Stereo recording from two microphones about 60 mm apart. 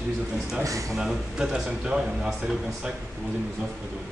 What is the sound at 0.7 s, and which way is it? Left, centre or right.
Speech, right.